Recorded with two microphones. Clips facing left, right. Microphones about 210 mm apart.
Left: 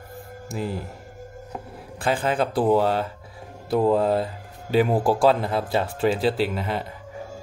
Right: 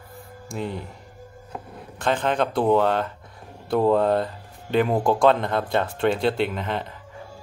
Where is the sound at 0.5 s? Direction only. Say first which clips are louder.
Left 1 dB; 5° left (ahead or behind).